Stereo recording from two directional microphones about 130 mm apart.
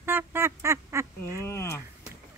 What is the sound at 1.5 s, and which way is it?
Speech, 20° left (ahead or behind).